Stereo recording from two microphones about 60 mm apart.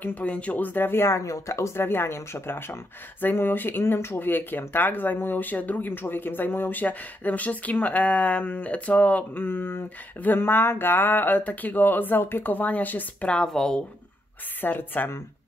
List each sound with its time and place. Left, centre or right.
0.0 s speech: left
1.2 s speech: left
13.5 s speech: centre
14.6 s speech: left